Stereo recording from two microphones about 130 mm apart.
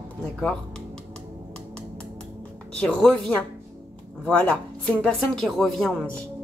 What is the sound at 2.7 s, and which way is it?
A woman's voice, 5° left (ahead or behind).